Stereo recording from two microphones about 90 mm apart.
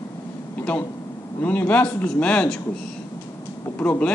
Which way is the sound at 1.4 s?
20° left (ahead or behind).